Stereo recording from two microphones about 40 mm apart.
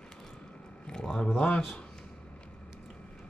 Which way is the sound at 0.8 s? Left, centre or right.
Centre.